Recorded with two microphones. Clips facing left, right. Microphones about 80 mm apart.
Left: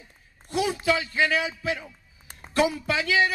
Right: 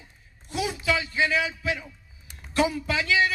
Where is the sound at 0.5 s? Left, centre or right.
Left.